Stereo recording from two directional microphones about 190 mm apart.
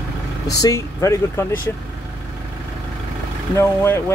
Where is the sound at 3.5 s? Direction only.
10° left (ahead or behind).